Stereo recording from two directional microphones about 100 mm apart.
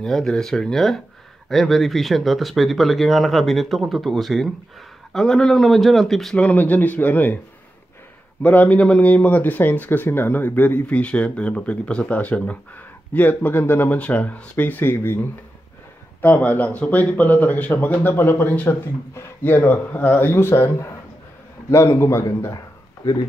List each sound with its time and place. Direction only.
0.0 s speech: 5° left (ahead or behind)
6.4 s speech: 15° left (ahead or behind)
8.4 s speech: 15° left (ahead or behind)
16.2 s a man's voice: 15° left (ahead or behind)